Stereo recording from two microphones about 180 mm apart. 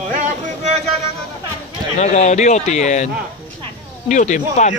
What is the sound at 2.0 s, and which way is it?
A man's voice, 40° left (ahead or behind).